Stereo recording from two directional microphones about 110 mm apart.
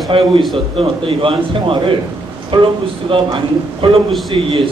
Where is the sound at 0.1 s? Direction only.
50° right (ahead or behind).